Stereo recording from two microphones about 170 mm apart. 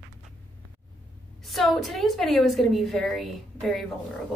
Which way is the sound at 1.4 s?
Centre (ahead or behind).